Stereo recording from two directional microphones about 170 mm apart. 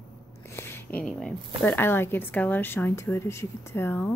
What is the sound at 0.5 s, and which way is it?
Speech, 15° left (ahead or behind).